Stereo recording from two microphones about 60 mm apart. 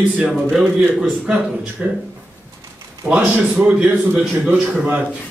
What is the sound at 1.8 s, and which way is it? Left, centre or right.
Speech, right.